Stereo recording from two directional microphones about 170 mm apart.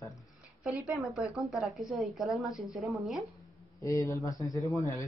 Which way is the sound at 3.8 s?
20° left (ahead or behind).